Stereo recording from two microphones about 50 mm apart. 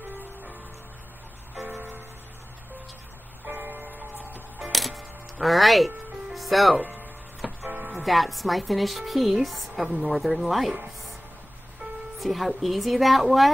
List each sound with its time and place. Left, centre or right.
1.8 s music: right
3.4 s music: right
4.7 s music: centre
6.8 s music: right
7.9 s speech: centre
12.2 s speech: centre